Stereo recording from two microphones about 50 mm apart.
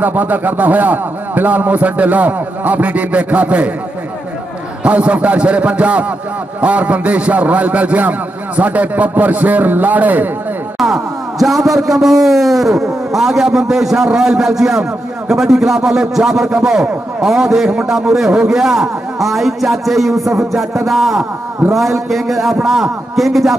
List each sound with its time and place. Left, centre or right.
0.0 s speech: right
4.8 s a man's voice: right
10.8 s a man's voice: centre